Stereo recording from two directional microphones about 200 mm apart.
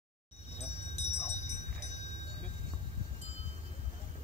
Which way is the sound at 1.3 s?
35° left (ahead or behind).